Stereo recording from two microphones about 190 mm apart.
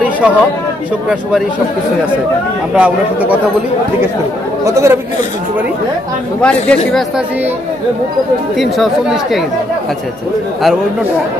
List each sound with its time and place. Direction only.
0.0 s chatter: 5° right (ahead or behind)
2.7 s speech: 5° right (ahead or behind)
4.6 s speech: 15° right (ahead or behind)
6.4 s speech: 5° left (ahead or behind)
8.5 s speech: centre (ahead or behind)